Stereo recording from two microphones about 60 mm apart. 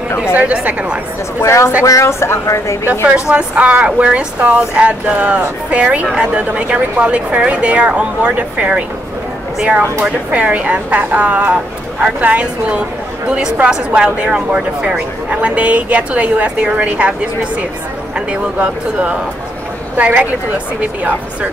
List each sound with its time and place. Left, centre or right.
0.4 s speech: right
1.4 s a woman's voice: left
3.3 s speech: centre
10.0 s speech: right